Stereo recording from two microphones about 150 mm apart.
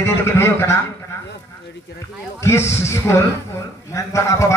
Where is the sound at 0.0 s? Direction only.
15° left (ahead or behind).